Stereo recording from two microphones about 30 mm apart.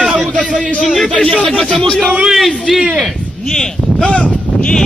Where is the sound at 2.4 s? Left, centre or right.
Centre.